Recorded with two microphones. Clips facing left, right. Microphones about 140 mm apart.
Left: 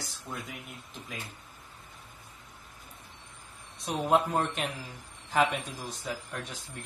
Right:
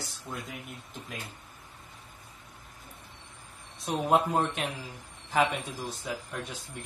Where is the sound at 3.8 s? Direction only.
Centre (ahead or behind).